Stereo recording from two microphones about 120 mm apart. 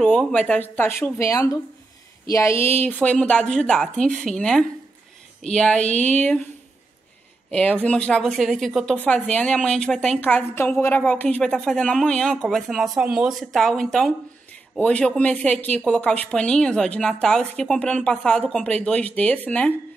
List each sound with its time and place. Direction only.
0.0 s speech: 10° left (ahead or behind)
7.5 s a woman's voice: 10° left (ahead or behind)
8.9 s a woman's voice: 10° left (ahead or behind)